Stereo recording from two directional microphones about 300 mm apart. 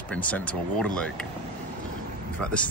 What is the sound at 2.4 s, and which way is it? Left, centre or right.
Speech, centre.